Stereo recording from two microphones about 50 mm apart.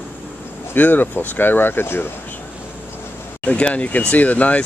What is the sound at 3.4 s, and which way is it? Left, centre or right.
Speech, left.